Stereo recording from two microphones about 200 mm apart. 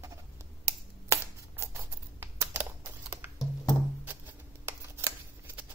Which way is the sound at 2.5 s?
10° right (ahead or behind).